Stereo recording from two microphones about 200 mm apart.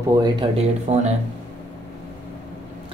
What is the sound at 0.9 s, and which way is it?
Speech, 35° right (ahead or behind).